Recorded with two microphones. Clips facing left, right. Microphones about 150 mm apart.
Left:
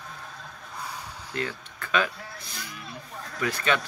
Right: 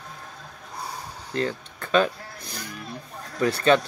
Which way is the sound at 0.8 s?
35° right (ahead or behind).